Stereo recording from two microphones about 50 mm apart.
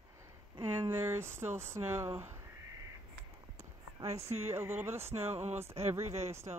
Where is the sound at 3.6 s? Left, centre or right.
Right.